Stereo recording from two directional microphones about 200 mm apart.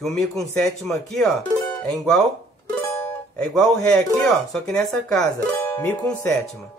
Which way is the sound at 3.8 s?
5° left (ahead or behind).